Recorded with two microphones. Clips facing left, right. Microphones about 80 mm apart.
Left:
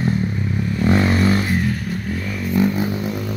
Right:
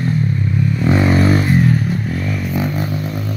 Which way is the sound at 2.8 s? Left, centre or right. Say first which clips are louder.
Even; centre.